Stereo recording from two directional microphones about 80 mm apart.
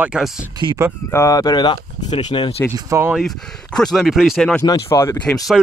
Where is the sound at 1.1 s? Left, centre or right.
Left.